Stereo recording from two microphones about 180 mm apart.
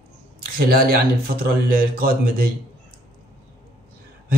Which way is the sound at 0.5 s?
55° right (ahead or behind).